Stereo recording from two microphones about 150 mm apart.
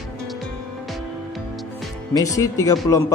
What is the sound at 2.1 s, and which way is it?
Speech, 25° left (ahead or behind).